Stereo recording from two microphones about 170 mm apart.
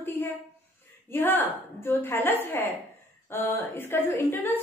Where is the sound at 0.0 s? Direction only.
15° left (ahead or behind).